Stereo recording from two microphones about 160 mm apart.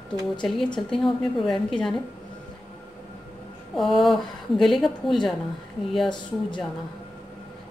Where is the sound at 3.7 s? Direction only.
Centre (ahead or behind).